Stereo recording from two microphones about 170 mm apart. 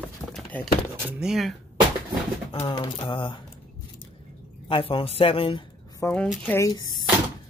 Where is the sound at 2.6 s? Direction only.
25° left (ahead or behind).